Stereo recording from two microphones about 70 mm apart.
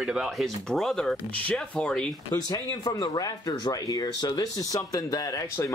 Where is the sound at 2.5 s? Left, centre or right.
Left.